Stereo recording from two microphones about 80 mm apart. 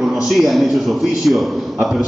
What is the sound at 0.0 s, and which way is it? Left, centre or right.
A man's voice, centre.